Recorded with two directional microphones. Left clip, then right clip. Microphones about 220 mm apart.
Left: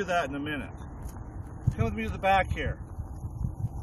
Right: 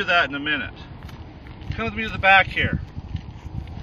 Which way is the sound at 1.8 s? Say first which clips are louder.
Right 8 dB; 10° left (ahead or behind).